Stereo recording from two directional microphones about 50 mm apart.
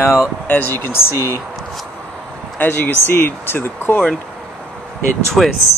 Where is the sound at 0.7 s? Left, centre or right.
Left.